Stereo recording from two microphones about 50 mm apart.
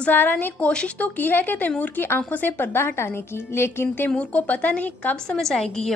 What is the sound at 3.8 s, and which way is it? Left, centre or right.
Speech, left.